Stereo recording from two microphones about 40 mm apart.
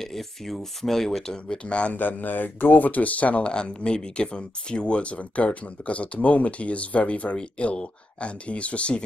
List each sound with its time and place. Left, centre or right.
0.0 s speech: centre
1.3 s speech: left
2.0 s speech: left
3.4 s speech: left